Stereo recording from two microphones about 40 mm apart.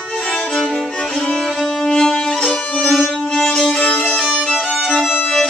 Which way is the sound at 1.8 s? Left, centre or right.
Left.